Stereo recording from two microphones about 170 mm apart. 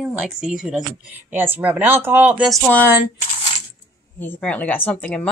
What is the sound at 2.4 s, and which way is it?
Speech, centre (ahead or behind).